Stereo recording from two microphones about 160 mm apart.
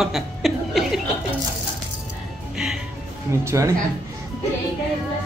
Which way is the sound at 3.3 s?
15° right (ahead or behind).